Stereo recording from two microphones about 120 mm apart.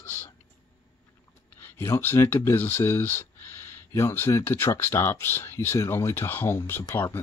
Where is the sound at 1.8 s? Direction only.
20° left (ahead or behind).